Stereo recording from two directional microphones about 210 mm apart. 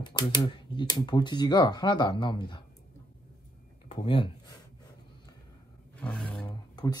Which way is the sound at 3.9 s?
25° left (ahead or behind).